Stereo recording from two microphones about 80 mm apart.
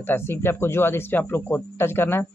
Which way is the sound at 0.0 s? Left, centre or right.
Left.